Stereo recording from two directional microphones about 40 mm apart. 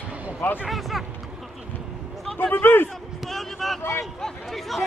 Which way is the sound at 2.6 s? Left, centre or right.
Left.